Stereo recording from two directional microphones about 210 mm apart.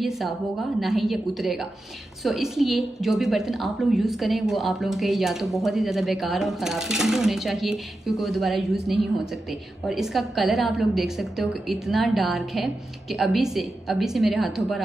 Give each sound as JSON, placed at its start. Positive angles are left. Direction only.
{"t": 0.0, "sound": "a woman's voice", "side_deg": 0}